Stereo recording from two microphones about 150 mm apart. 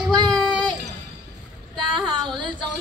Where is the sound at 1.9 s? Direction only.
30° right (ahead or behind).